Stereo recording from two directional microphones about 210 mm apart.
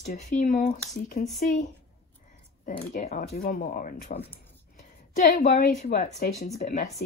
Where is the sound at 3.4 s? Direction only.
45° left (ahead or behind).